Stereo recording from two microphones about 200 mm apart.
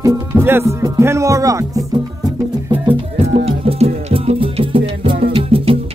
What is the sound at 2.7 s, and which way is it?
Music, 30° right (ahead or behind).